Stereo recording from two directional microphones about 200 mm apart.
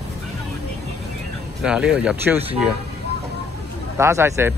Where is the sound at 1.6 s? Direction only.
5° right (ahead or behind).